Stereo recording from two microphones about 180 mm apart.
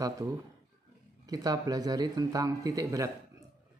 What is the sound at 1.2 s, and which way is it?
Speech, 20° right (ahead or behind).